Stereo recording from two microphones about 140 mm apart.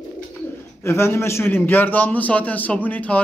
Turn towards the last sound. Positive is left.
turn(degrees=10)  # may be behind; listen again after turning